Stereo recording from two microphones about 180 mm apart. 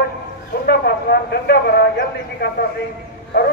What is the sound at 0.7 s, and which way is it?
A man's voice, 60° left (ahead or behind).